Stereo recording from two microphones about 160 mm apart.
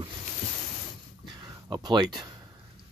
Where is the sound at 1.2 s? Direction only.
25° right (ahead or behind).